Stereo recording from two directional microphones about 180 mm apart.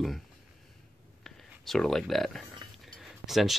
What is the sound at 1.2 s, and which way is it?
Speech, centre (ahead or behind).